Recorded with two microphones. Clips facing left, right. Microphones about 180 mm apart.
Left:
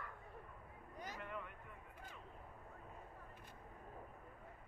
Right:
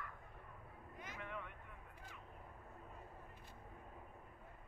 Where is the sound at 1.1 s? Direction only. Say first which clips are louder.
Right 2 dB; centre (ahead or behind).